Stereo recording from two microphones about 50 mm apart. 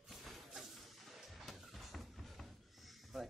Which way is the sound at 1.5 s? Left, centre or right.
Centre.